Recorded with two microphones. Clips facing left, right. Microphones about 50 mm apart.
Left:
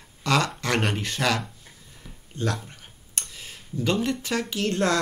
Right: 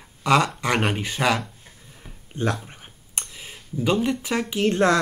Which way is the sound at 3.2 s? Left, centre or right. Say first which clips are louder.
Right 2 dB; centre.